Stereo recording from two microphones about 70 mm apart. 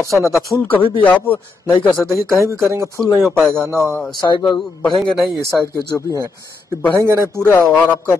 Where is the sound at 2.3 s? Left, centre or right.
Right.